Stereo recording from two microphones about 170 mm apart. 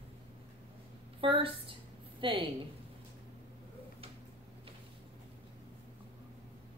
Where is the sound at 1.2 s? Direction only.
30° right (ahead or behind).